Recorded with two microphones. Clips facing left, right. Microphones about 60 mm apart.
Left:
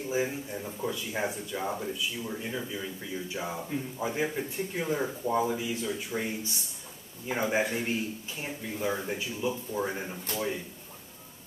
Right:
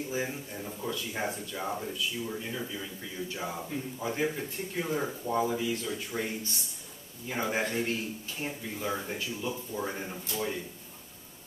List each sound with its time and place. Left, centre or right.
0.1 s speech: centre